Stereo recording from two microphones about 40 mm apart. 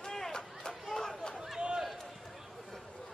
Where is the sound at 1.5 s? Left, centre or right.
Centre.